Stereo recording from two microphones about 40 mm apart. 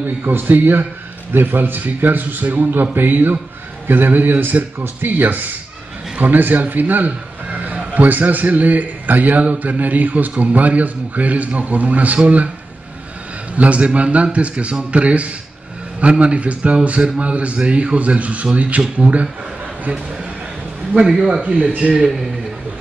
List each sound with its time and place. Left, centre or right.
0.2 s a man's voice: right
13.6 s a man's voice: right
21.0 s speech: centre
21.4 s a man's voice: right